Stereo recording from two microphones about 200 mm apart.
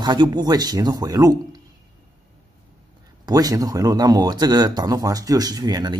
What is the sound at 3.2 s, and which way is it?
Speech, 20° right (ahead or behind).